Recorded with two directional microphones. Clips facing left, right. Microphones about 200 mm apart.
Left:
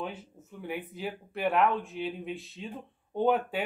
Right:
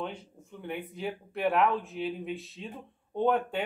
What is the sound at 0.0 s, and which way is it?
Speech, 5° left (ahead or behind).